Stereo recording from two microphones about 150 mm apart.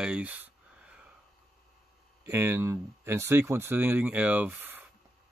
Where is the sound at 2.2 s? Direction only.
15° right (ahead or behind).